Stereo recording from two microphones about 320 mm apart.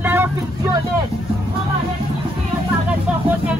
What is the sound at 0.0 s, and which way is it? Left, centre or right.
Vehicle, centre.